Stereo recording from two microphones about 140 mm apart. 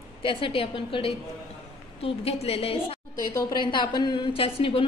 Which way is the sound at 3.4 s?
30° left (ahead or behind).